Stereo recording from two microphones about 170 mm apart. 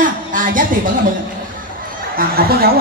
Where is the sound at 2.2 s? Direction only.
60° right (ahead or behind).